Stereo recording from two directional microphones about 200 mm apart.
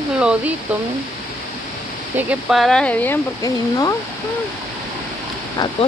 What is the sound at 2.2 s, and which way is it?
Speech, 5° right (ahead or behind).